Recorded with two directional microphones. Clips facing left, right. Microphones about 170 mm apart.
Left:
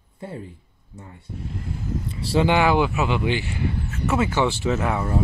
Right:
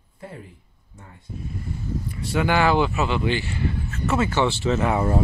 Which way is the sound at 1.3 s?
90° left.